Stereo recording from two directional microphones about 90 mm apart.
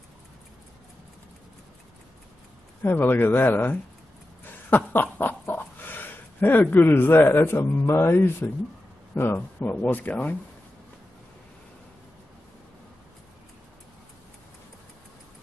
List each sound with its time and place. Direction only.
2.8 s speech: 20° left (ahead or behind)
4.5 s a sound: 20° left (ahead or behind)
9.1 s speech: 25° left (ahead or behind)